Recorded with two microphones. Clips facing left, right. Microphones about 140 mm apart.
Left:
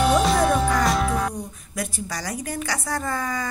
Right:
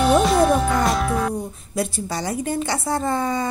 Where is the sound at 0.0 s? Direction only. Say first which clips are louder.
Right 3 dB; centre (ahead or behind).